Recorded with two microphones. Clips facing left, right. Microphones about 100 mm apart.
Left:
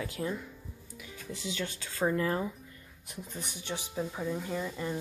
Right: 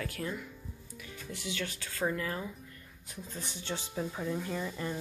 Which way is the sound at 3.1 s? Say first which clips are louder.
Left 1 dB; 15° left (ahead or behind).